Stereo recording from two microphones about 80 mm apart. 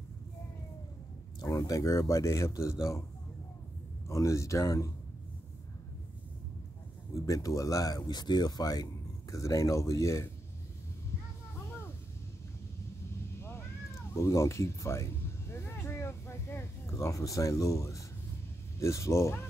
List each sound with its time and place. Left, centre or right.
1.4 s speech: left
4.1 s speech: left
7.2 s speech: left
14.1 s speech: left